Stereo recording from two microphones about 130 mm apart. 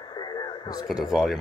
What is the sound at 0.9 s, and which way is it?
Speech, 5° right (ahead or behind).